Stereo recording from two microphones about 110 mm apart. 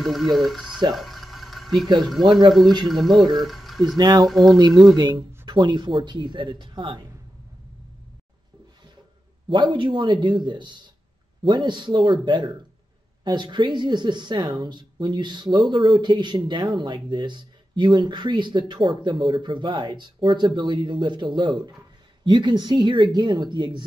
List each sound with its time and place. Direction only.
0.0 s speech: centre (ahead or behind)
0.9 s a sound: centre (ahead or behind)
2.0 s speech: centre (ahead or behind)
3.9 s speech: 40° right (ahead or behind)
4.3 s speech: centre (ahead or behind)
4.6 s speech: 40° right (ahead or behind)
9.5 s speech: 45° right (ahead or behind)